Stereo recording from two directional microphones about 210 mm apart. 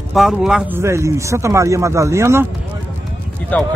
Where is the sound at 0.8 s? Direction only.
15° right (ahead or behind).